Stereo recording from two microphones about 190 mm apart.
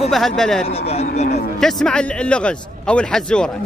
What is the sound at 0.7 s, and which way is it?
Speech, 35° left (ahead or behind).